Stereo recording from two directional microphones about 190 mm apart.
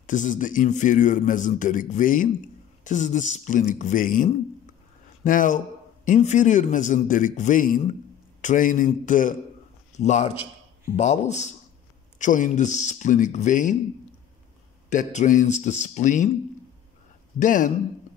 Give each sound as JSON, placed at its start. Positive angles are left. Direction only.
{"t": 0.0, "sound": "a man's voice", "side_deg": 40}
{"t": 14.9, "sound": "a man's voice", "side_deg": 40}
{"t": 17.4, "sound": "a man's voice", "side_deg": 40}